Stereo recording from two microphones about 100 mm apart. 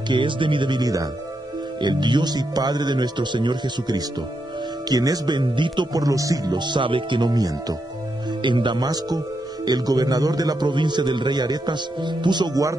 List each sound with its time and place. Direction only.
0.1 s a man's voice: 55° right (ahead or behind)
5.9 s a man's voice: 35° right (ahead or behind)
8.4 s a man's voice: 50° right (ahead or behind)